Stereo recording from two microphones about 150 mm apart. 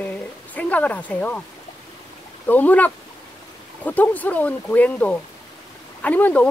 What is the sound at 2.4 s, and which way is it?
Speech, 10° left (ahead or behind).